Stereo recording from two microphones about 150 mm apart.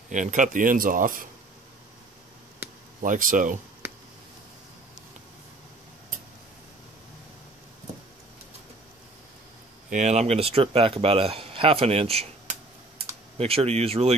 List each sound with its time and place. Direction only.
0.1 s speech: 55° right (ahead or behind)
2.6 s a sound: 15° right (ahead or behind)
3.0 s speech: 60° right (ahead or behind)
9.8 s speech: 50° right (ahead or behind)